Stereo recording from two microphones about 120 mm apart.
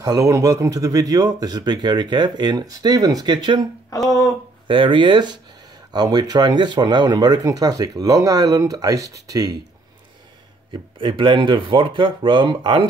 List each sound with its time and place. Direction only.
0.0 s speech: 30° right (ahead or behind)
4.6 s speech: 45° right (ahead or behind)
10.7 s speech: 45° right (ahead or behind)